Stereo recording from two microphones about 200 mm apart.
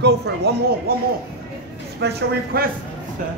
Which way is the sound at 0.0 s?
55° right (ahead or behind).